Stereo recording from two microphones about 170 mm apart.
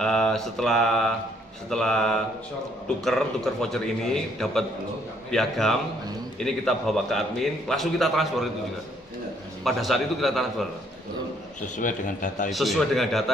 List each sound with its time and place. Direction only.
0.0 s a man's voice: 5° left (ahead or behind)
9.7 s a man's voice: centre (ahead or behind)
11.6 s a man's voice: 50° left (ahead or behind)
12.4 s a man's voice: centre (ahead or behind)